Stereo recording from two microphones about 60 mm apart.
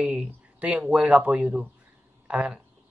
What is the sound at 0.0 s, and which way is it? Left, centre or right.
Speech, centre.